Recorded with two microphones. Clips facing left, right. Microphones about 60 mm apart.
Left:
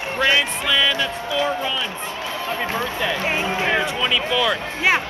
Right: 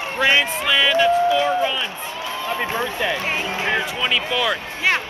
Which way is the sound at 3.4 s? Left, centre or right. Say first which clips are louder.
Left 2 dB; centre.